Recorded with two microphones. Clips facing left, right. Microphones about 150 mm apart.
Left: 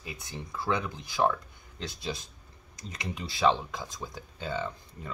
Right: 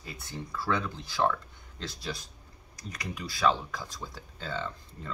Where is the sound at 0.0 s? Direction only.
15° left (ahead or behind).